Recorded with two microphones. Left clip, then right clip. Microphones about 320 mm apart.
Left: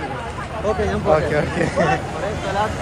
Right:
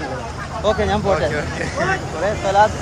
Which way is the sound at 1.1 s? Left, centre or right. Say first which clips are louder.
Left 2 dB; centre.